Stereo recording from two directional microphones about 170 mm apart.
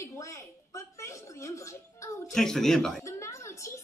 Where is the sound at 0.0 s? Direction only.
15° left (ahead or behind).